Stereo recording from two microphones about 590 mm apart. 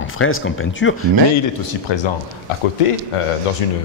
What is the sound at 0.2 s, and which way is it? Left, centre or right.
Speech, left.